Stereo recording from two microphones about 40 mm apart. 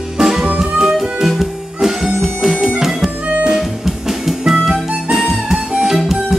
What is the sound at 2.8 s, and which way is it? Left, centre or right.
Music, centre.